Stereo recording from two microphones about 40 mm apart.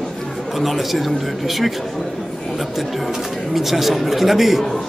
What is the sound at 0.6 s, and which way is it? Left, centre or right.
Speech, centre.